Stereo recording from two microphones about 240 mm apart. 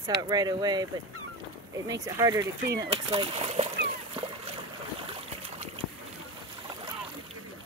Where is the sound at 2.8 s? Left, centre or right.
Right.